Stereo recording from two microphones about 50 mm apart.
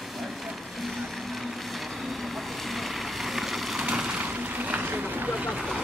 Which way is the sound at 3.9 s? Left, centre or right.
Right.